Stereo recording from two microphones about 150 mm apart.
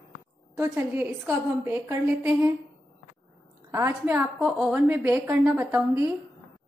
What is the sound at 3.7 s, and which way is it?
A woman's voice, 15° right (ahead or behind).